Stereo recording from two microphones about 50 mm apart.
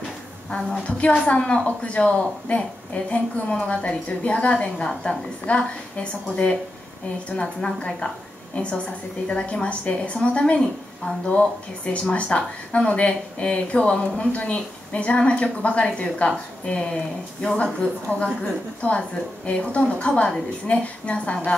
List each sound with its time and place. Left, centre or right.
0.6 s a woman's voice: centre
0.8 s a woman's voice: centre